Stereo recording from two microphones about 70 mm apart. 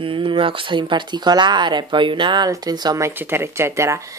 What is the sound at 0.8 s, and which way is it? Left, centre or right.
Speech, right.